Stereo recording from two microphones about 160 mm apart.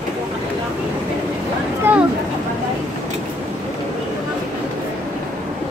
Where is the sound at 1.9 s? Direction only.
10° right (ahead or behind).